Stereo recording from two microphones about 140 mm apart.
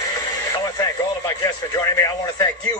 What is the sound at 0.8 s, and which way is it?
Speech, 25° left (ahead or behind).